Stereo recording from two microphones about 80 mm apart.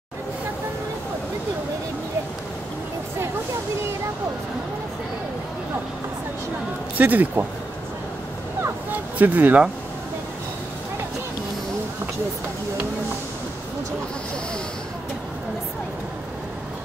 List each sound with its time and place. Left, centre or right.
7.0 s speech: right
9.2 s speech: right